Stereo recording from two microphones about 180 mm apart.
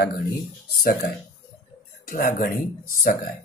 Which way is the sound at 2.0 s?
50° left (ahead or behind).